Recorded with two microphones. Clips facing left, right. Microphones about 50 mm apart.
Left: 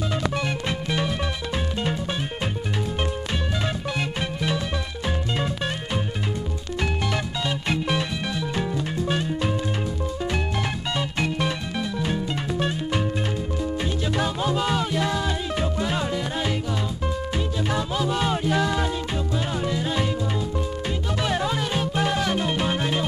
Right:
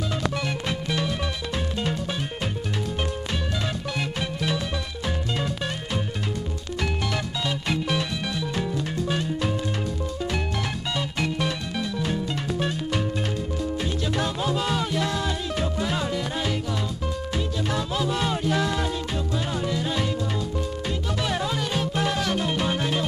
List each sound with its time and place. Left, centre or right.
0.1 s music: centre
5.0 s music: centre
6.8 s music: centre
11.0 s music: centre
14.1 s music: centre
17.6 s music: centre
21.2 s music: centre